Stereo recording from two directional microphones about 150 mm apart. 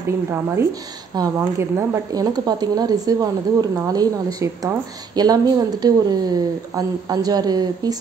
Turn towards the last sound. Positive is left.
turn(degrees=-25)  # may be behind; listen again after turning